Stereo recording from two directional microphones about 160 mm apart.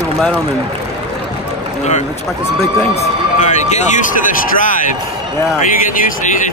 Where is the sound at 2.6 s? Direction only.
45° left (ahead or behind).